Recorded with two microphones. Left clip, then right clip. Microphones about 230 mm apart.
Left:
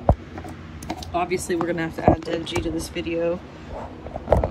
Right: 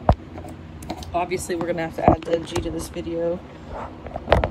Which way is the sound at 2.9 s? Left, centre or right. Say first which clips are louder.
Left 1 dB; centre.